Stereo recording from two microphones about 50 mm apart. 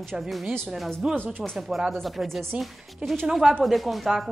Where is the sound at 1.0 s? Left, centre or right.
Centre.